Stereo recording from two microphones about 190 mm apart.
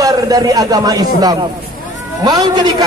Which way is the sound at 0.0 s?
20° right (ahead or behind).